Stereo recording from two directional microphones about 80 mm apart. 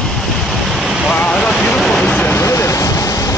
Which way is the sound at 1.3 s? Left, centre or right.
Centre.